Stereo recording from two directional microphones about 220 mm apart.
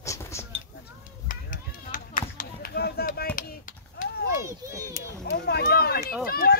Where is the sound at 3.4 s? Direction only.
35° left (ahead or behind).